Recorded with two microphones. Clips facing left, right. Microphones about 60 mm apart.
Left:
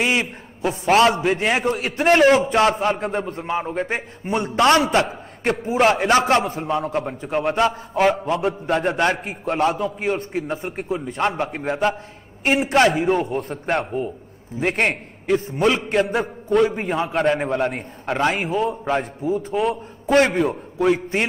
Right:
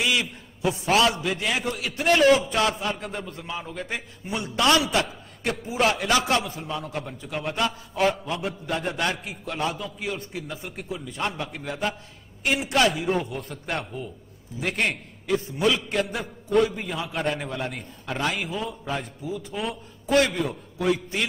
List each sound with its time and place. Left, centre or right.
0.0 s a man's voice: left
12.4 s a man's voice: left
17.1 s a man's voice: left
17.4 s a man's voice: left
19.2 s a man's voice: left
19.6 s a man's voice: left